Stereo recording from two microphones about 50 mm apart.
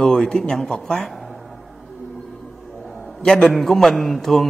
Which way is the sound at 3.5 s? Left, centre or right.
Centre.